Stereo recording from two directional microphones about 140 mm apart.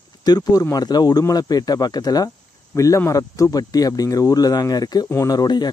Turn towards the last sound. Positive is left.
turn(degrees=30)  # may be behind; listen again after turning